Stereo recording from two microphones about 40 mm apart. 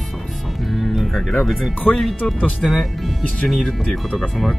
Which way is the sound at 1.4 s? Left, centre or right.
Centre.